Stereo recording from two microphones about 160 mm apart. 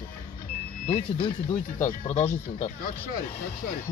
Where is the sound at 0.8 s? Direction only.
40° left (ahead or behind).